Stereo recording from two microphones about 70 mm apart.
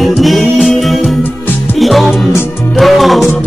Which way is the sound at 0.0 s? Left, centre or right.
Centre.